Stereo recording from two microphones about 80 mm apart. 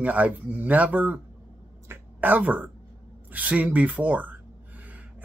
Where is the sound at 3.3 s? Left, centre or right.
Centre.